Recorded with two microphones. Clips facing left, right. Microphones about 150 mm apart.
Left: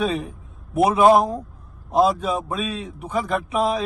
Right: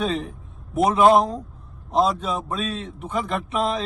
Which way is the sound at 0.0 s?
Centre (ahead or behind).